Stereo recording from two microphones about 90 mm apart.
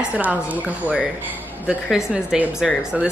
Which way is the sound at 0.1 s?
15° right (ahead or behind).